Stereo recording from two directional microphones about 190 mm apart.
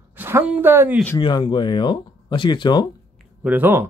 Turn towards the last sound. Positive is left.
turn(degrees=-10)  # may be behind; listen again after turning